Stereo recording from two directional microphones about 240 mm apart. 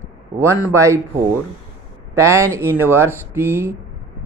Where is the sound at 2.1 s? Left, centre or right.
Centre.